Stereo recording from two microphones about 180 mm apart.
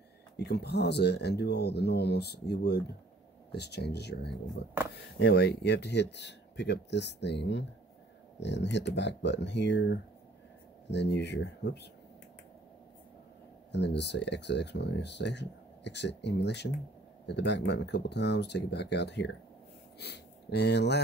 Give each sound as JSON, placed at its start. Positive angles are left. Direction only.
{"t": 0.4, "sound": "speech", "side_deg": 65}
{"t": 13.7, "sound": "speech", "side_deg": 75}